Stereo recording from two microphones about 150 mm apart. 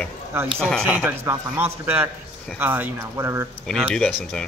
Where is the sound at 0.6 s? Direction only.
5° left (ahead or behind).